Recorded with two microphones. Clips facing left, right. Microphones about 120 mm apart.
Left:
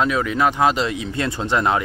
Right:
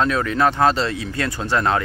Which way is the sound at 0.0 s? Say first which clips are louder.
Even; 10° left (ahead or behind).